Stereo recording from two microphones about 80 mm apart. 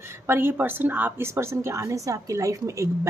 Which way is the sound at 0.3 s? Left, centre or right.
Right.